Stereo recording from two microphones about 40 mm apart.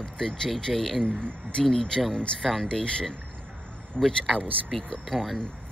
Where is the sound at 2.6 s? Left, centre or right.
Left.